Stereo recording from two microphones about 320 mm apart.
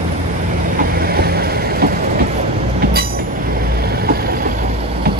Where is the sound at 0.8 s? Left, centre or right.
Right.